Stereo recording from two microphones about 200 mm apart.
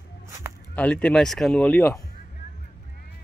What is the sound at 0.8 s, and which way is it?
Speech, 5° left (ahead or behind).